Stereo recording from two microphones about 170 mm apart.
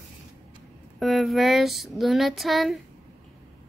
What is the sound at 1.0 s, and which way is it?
Speech, centre (ahead or behind).